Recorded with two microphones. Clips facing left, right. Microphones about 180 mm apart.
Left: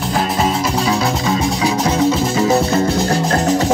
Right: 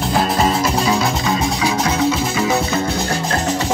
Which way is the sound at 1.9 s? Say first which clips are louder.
Left 3 dB; 40° left (ahead or behind).